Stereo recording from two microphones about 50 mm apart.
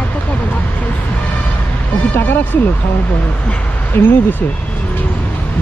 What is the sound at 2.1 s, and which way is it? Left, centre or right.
Speech, left.